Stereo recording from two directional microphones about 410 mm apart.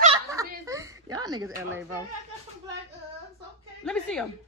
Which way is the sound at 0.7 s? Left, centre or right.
Centre.